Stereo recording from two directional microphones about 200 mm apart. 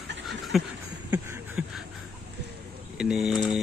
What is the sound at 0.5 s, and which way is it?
Speech, centre (ahead or behind).